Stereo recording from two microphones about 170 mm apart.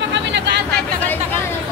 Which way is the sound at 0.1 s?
90° right.